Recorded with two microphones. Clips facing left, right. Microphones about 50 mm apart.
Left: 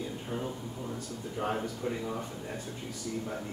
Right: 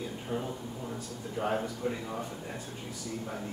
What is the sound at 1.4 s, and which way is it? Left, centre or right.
Speech, centre.